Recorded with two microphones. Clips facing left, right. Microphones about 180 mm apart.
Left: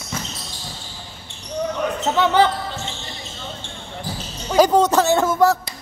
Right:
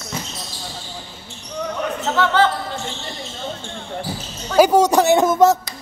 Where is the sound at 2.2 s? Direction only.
15° left (ahead or behind).